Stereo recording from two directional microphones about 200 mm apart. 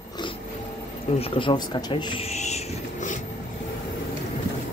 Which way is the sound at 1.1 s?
30° left (ahead or behind).